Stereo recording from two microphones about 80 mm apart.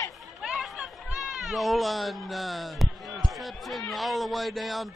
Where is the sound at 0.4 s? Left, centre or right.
Centre.